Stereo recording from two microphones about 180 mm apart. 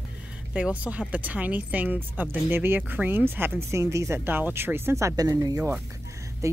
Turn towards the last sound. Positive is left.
turn(degrees=-15)  # may be behind; listen again after turning